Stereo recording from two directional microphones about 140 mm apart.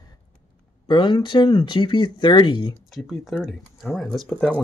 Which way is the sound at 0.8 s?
35° left (ahead or behind).